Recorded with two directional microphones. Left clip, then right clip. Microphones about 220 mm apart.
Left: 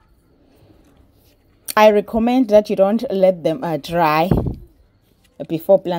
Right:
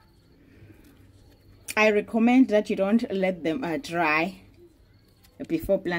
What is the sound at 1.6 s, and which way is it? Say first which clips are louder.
Speech: left 10 dB; 20° left (ahead or behind).